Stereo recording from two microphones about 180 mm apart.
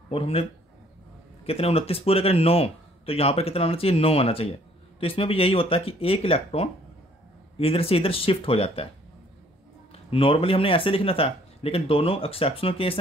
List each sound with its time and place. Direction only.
0.1 s a man's voice: 35° left (ahead or behind)
9.9 s a man's voice: 30° left (ahead or behind)